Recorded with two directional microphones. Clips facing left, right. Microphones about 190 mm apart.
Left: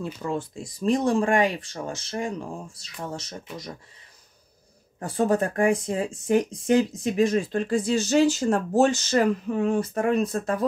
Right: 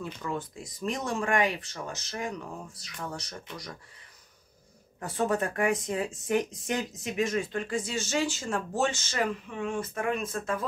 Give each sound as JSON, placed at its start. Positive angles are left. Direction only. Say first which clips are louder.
{"t": 0.0, "sound": "speech", "louder": "left 5 dB", "side_deg": 30}
{"t": 5.0, "sound": "speech", "louder": "left 5 dB", "side_deg": 35}